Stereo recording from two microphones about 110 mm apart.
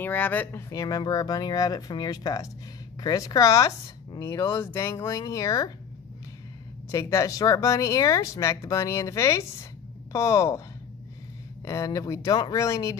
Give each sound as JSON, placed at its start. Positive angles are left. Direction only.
{"t": 0.0, "sound": "speech", "side_deg": 15}
{"t": 6.9, "sound": "speech", "side_deg": 25}
{"t": 11.6, "sound": "speech", "side_deg": 30}